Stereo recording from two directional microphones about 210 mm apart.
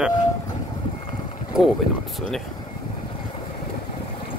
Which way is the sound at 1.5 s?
5° right (ahead or behind).